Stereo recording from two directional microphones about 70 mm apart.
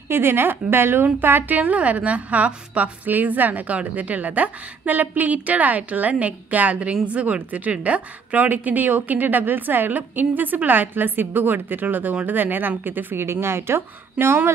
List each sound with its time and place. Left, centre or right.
0.1 s a woman's voice: right